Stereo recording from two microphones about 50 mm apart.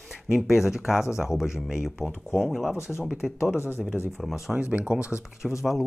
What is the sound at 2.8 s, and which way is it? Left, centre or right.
Speech, left.